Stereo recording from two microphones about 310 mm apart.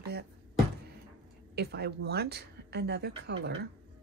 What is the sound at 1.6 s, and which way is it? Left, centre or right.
Speech, right.